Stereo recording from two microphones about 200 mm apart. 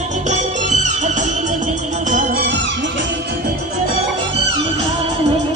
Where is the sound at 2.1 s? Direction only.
40° right (ahead or behind).